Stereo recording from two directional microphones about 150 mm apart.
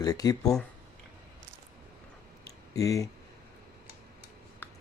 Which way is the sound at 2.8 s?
20° left (ahead or behind).